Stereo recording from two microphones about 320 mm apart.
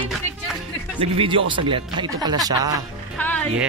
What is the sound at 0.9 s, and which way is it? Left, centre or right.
Speech, centre.